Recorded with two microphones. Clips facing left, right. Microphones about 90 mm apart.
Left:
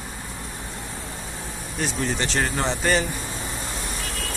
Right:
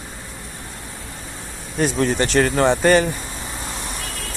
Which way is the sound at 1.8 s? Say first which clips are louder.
Right 7 dB; 55° right (ahead or behind).